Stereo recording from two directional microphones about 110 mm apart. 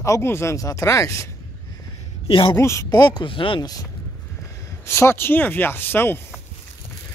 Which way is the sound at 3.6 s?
35° left (ahead or behind).